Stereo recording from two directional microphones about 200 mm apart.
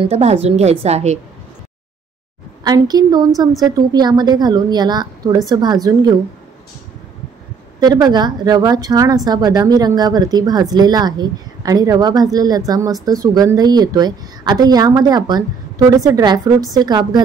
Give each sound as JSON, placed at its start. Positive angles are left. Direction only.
{"t": 0.0, "sound": "a woman's voice", "side_deg": -30}
{"t": 2.6, "sound": "a woman's voice", "side_deg": -20}
{"t": 7.8, "sound": "a woman's voice", "side_deg": -20}